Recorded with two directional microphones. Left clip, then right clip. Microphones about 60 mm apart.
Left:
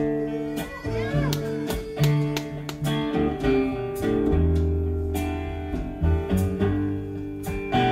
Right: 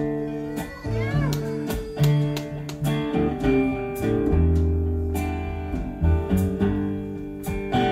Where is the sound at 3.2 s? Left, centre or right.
Centre.